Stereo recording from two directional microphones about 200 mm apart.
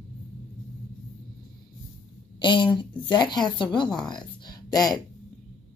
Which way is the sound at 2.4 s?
25° left (ahead or behind).